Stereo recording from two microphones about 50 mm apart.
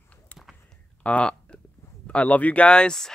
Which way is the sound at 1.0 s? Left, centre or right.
Left.